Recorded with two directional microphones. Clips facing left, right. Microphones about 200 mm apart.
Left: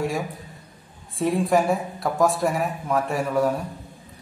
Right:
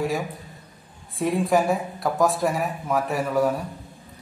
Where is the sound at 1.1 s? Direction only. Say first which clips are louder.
Left 1 dB; centre (ahead or behind).